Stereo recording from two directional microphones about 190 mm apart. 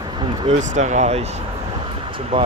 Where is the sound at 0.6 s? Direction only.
40° right (ahead or behind).